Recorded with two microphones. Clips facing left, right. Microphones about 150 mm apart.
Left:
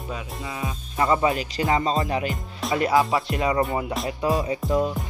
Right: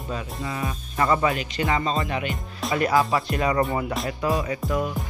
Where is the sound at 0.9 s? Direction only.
20° left (ahead or behind).